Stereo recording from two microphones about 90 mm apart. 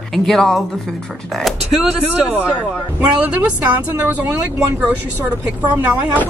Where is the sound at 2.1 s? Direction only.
15° right (ahead or behind).